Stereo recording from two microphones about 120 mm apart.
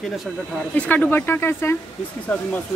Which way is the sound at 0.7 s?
10° left (ahead or behind).